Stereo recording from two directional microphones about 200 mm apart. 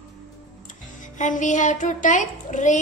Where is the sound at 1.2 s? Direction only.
40° left (ahead or behind).